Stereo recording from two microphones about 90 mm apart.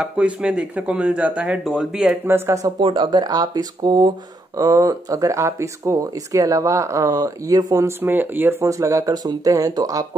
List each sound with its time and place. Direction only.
0.0 s speech: 10° right (ahead or behind)
2.2 s speech: 30° right (ahead or behind)
2.8 s speech: 60° right (ahead or behind); by 7.9 s 40° right (ahead or behind)
8.0 s speech: 20° right (ahead or behind)
8.6 s speech: 35° right (ahead or behind)